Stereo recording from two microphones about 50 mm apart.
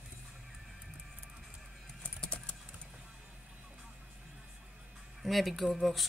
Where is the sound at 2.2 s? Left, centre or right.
Left.